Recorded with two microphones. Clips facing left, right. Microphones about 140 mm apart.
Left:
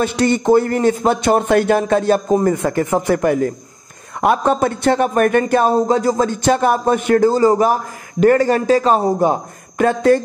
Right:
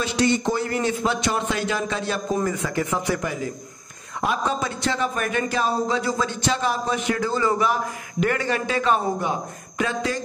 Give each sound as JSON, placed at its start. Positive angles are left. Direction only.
{"t": 0.0, "sound": "a man's voice", "side_deg": 50}